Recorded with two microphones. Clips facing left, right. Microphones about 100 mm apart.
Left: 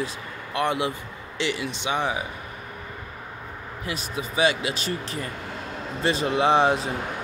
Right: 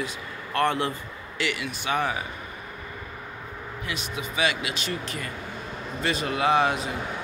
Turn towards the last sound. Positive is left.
turn(degrees=30)  # may be behind; listen again after turning